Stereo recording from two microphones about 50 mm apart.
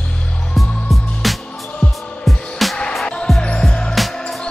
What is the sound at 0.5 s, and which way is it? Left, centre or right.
Music, centre.